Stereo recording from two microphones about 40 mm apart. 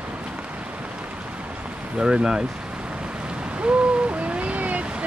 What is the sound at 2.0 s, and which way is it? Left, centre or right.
Speech, right.